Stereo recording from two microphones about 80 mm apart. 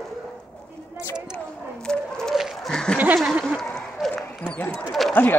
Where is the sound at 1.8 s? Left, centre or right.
Centre.